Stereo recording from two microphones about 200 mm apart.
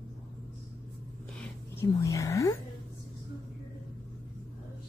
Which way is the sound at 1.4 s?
15° left (ahead or behind).